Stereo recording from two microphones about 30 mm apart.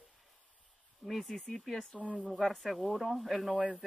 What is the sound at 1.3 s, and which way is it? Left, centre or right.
Speech, centre.